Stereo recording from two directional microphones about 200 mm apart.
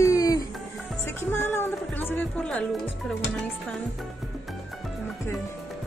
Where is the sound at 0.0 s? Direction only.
15° left (ahead or behind).